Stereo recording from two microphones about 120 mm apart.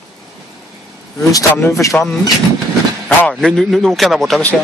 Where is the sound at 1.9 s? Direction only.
15° left (ahead or behind).